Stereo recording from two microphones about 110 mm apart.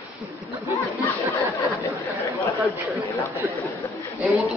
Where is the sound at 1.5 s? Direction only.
30° left (ahead or behind).